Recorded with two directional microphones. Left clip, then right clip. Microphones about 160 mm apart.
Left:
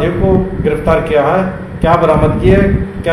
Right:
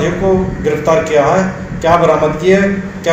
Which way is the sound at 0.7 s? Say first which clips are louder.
Right 1 dB; 5° left (ahead or behind).